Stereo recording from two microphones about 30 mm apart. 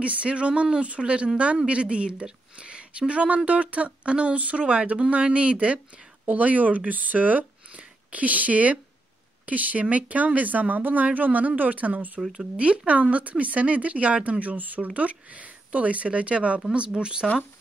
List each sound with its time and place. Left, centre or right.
0.0 s speech: right
6.2 s speech: right
7.7 s speech: right
12.4 s speech: right
14.4 s speech: right
15.0 s speech: right